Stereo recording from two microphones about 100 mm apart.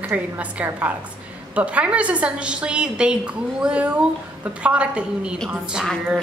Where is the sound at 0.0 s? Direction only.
15° right (ahead or behind).